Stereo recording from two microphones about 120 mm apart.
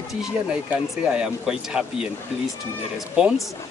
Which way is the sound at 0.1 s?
5° right (ahead or behind).